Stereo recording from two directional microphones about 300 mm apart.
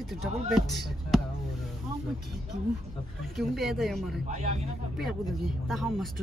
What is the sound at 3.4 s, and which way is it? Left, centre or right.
Speech, centre.